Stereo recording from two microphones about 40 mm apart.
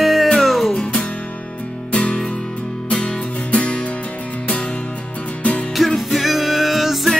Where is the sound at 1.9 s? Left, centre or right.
Left.